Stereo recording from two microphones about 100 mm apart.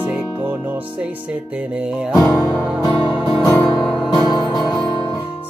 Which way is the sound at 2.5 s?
10° right (ahead or behind).